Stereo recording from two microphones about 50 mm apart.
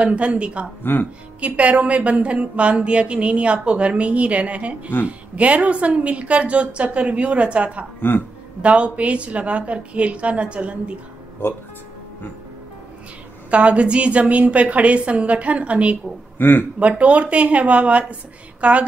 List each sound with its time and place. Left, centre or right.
0.0 s a woman's voice: right
0.9 s speech: left
1.4 s a woman's voice: right
8.0 s speech: left
8.6 s a woman's voice: right
13.5 s a woman's voice: right
16.3 s speech: left
17.0 s a woman's voice: right